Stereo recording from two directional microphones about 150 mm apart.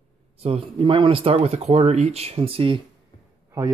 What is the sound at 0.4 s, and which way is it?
Speech, 40° right (ahead or behind).